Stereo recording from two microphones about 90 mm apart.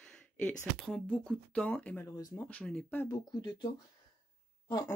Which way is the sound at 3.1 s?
50° left (ahead or behind).